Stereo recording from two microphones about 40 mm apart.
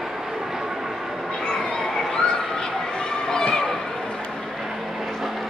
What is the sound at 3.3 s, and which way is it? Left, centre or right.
Run, centre.